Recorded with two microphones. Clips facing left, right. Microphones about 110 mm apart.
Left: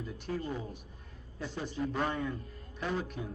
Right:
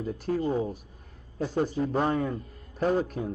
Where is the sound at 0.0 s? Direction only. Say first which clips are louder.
Right 9 dB; 40° right (ahead or behind).